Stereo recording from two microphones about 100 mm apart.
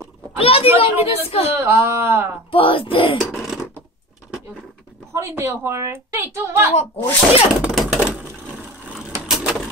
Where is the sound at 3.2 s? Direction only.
5° right (ahead or behind).